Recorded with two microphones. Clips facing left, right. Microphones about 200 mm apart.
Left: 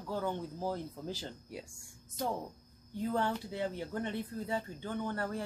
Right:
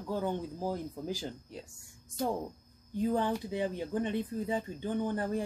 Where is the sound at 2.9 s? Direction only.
15° right (ahead or behind).